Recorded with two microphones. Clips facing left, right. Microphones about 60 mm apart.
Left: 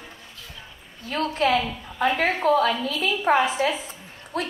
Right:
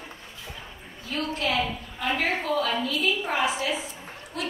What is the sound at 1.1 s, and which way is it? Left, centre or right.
A woman's voice, left.